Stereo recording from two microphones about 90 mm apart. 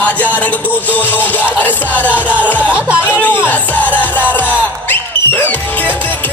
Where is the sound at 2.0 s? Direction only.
15° right (ahead or behind).